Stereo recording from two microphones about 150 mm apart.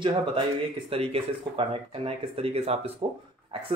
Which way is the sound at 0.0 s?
35° right (ahead or behind).